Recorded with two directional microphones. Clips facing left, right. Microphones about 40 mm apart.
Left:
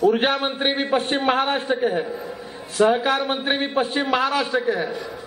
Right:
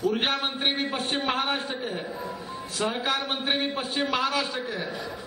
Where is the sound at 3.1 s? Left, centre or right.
Centre.